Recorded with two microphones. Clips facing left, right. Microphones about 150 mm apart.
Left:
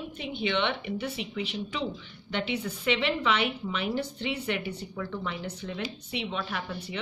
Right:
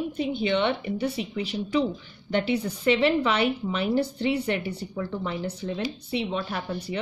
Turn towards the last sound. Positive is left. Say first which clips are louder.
# right 4 dB
turn(degrees=-40)  # may be behind; listen again after turning